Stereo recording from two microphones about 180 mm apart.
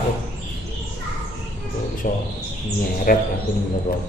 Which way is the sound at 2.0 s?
50° left (ahead or behind).